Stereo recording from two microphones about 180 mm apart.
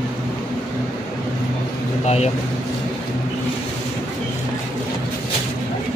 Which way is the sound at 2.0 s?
35° left (ahead or behind).